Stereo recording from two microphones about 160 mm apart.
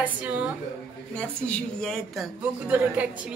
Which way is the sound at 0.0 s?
10° right (ahead or behind).